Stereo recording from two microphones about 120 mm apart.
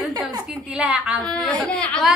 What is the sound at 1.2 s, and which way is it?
Speech, 5° left (ahead or behind).